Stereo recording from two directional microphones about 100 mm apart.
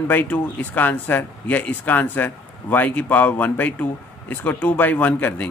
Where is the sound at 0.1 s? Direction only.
15° left (ahead or behind).